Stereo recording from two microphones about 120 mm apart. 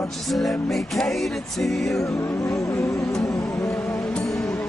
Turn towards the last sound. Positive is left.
turn(degrees=25)  # may be behind; listen again after turning